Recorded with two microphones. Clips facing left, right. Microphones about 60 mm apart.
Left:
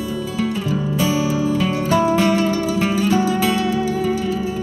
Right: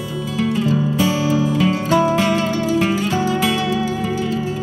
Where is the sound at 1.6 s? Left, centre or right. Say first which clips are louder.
Right 2 dB; right.